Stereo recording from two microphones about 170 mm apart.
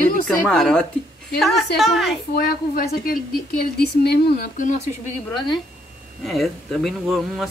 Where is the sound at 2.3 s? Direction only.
65° left (ahead or behind).